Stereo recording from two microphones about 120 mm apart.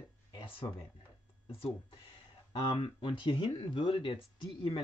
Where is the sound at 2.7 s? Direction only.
45° left (ahead or behind).